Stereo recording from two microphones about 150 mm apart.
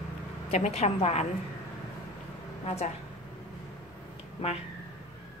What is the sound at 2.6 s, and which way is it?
Speech, 45° left (ahead or behind).